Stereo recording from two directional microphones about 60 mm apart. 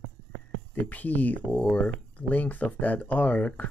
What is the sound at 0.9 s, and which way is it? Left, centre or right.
Speech, left.